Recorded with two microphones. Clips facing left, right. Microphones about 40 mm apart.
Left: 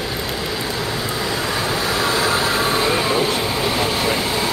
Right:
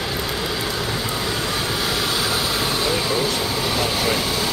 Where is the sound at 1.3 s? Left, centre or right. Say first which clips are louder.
Left 2 dB; left.